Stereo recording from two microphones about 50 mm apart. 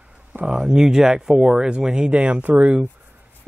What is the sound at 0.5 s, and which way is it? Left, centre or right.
Speech, centre.